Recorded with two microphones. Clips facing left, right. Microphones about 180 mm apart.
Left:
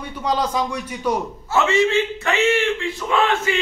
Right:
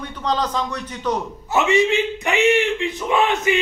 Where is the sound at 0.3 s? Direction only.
10° left (ahead or behind).